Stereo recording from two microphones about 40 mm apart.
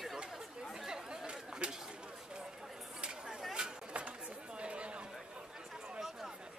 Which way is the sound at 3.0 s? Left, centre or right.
Right.